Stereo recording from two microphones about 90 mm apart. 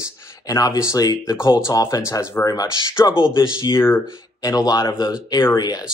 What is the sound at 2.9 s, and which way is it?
Speech, 30° left (ahead or behind).